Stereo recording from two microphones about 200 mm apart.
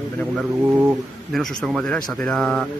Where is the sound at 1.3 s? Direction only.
Centre (ahead or behind).